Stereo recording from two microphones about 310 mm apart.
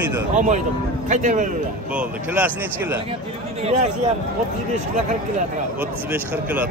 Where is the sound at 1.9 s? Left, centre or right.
Centre.